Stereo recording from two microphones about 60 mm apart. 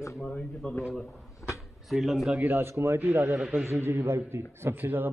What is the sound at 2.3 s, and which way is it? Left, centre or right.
A man's voice, right.